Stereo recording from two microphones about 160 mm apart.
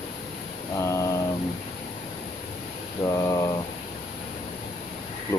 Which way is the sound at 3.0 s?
20° left (ahead or behind).